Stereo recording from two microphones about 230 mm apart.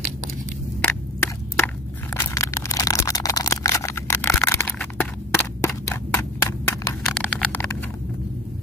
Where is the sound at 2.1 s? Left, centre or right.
Centre.